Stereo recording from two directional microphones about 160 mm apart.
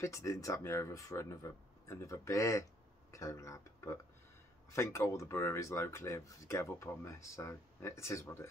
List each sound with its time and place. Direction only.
0.0 s speech: 20° left (ahead or behind)